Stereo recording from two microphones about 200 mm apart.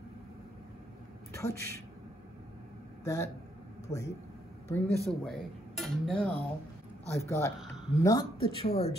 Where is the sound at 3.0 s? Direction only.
15° left (ahead or behind).